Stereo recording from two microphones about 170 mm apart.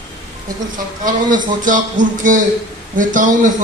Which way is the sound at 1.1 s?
50° right (ahead or behind).